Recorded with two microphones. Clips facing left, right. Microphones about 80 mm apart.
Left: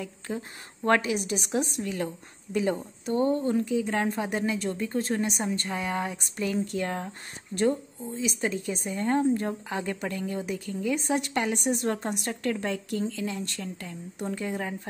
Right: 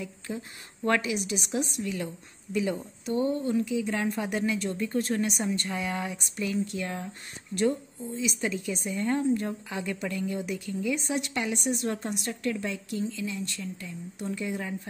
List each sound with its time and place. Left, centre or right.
0.0 s speech: left